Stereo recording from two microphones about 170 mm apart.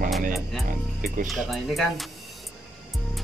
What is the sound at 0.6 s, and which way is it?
Speech, 55° right (ahead or behind).